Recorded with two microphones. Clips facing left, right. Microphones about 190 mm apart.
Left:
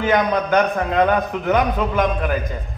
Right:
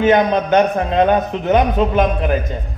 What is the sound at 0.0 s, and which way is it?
A man's voice, 25° right (ahead or behind).